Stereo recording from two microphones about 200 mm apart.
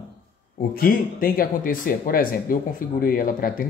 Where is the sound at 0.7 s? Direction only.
45° left (ahead or behind).